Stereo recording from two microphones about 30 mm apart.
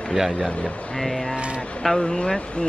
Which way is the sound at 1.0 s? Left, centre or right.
Centre.